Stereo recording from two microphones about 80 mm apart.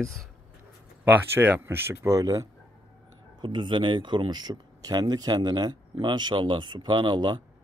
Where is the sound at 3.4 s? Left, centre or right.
Right.